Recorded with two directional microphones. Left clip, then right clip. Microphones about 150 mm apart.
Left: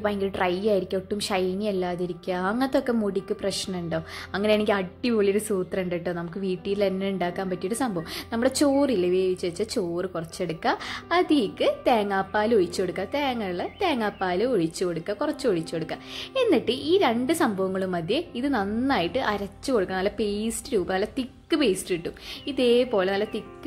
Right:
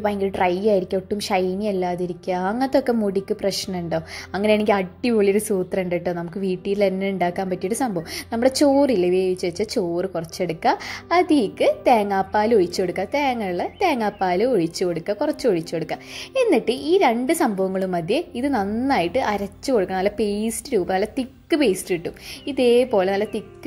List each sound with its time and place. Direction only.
0.0 s a woman's voice: 15° right (ahead or behind)